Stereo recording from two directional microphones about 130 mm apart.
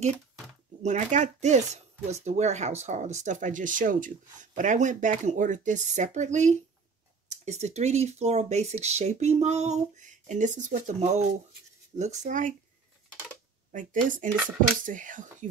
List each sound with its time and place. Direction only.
0.8 s speech: 65° right (ahead or behind)
13.7 s speech: 90° right